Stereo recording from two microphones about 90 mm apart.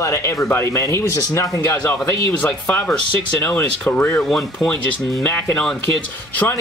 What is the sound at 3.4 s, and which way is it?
Speech, 25° left (ahead or behind).